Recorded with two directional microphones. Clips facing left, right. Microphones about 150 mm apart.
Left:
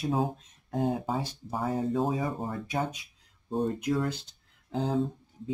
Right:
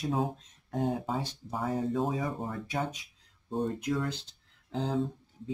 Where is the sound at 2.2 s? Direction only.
30° left (ahead or behind).